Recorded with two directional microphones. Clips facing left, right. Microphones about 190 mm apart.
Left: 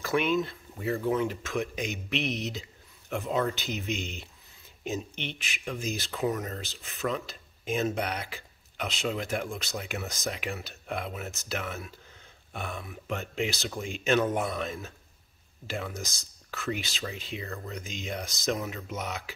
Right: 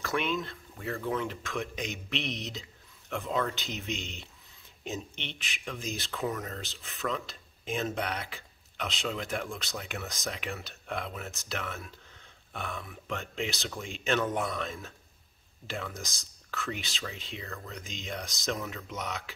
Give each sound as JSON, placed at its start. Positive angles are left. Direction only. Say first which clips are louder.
{"t": 0.0, "sound": "speech", "louder": "left 5 dB", "side_deg": 0}